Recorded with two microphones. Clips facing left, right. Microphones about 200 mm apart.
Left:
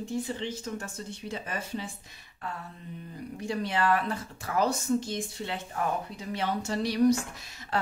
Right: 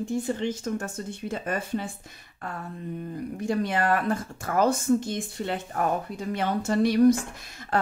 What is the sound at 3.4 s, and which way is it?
Speech, 50° right (ahead or behind).